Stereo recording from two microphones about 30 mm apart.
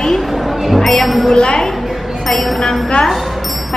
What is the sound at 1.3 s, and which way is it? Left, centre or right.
A woman's voice, left.